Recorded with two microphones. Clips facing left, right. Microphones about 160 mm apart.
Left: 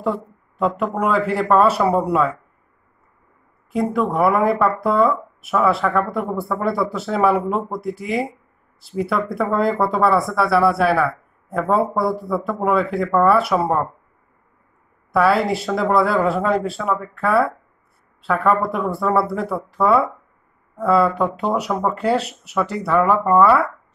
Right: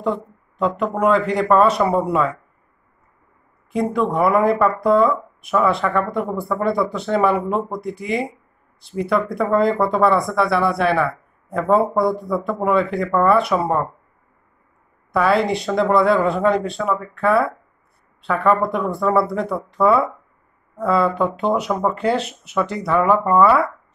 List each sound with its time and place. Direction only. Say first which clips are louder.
0.0 s speech: even; 5° left (ahead or behind)
3.7 s speech: even; 5° left (ahead or behind)
15.1 s speech: left 1 dB; 5° left (ahead or behind)